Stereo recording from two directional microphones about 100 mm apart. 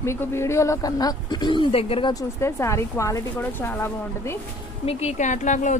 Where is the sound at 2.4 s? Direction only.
30° left (ahead or behind).